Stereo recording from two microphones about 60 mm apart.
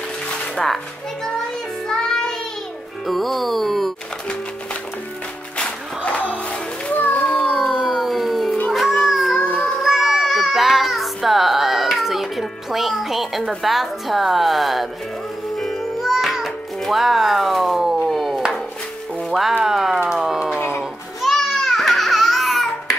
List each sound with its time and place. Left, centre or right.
1.9 s music: centre
3.1 s a woman's voice: centre
6.9 s children playing: left
7.5 s a sound: centre
8.6 s music: centre
9.8 s child singing: centre
13.5 s a woman's voice: centre
15.5 s music: centre
16.0 s music: centre
18.0 s a sound: centre
19.6 s a sound: centre
21.2 s babbling: centre